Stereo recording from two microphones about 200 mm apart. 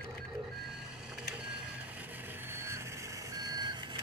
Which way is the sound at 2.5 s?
10° right (ahead or behind).